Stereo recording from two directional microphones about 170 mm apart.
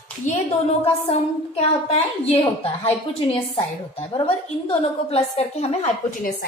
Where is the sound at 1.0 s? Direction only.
35° left (ahead or behind).